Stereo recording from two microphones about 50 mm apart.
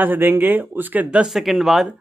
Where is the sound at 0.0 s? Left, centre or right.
Right.